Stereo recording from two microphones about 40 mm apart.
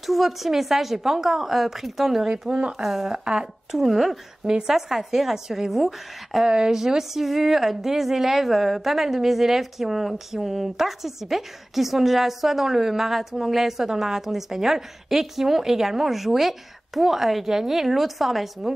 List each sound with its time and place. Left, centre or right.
0.0 s a woman's voice: centre
3.1 s speech: centre
3.7 s a woman's voice: centre
4.5 s speech: centre